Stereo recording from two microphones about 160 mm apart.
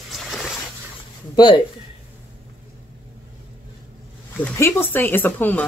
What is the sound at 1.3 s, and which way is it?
Speech, 30° left (ahead or behind).